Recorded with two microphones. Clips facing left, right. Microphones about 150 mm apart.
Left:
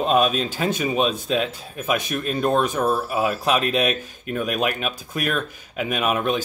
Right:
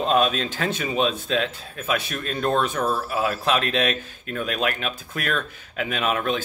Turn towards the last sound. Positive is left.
turn(degrees=10)  # may be behind; listen again after turning